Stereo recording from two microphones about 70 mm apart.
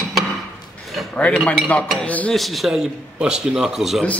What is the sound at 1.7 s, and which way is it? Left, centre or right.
Dishes, centre.